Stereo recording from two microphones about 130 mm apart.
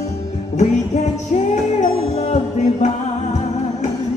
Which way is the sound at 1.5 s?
60° left (ahead or behind).